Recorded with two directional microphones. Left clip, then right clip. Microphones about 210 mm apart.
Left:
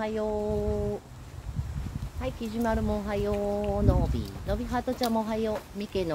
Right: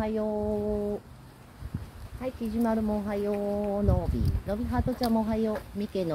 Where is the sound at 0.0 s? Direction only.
25° right (ahead or behind).